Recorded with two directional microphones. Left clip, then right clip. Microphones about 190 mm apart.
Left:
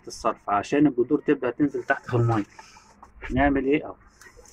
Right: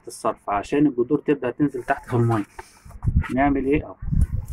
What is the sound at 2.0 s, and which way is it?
Speech, 45° right (ahead or behind).